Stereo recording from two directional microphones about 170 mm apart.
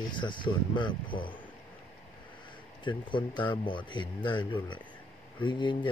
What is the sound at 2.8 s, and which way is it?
Speech, 25° left (ahead or behind).